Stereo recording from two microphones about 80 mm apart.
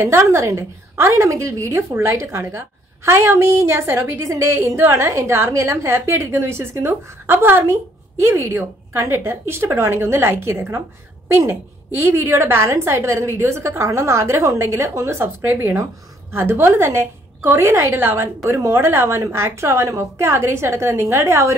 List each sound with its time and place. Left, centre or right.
0.0 s a woman's voice: right